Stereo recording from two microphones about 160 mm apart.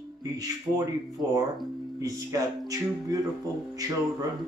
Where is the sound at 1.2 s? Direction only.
20° right (ahead or behind).